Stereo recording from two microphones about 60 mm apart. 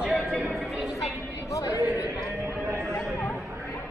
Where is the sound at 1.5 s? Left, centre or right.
Left.